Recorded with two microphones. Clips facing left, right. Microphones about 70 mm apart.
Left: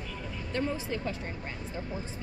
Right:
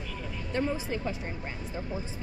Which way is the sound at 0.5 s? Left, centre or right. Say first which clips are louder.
Right 2 dB; centre.